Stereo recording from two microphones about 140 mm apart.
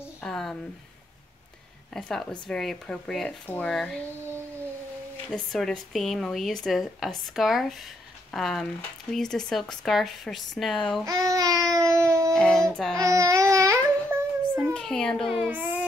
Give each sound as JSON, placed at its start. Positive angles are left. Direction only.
{"t": 0.2, "sound": "a sound", "side_deg": 5}
{"t": 2.0, "sound": "speech", "side_deg": 5}
{"t": 5.3, "sound": "speech", "side_deg": 5}
{"t": 11.1, "sound": "babbling", "side_deg": -25}
{"t": 12.4, "sound": "speech", "side_deg": 5}
{"t": 12.9, "sound": "a sound", "side_deg": -25}
{"t": 14.1, "sound": "child singing", "side_deg": -15}
{"t": 14.7, "sound": "speech", "side_deg": 5}
{"t": 15.4, "sound": "music", "side_deg": -10}